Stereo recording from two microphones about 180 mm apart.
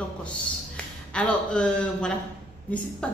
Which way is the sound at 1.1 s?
5° left (ahead or behind).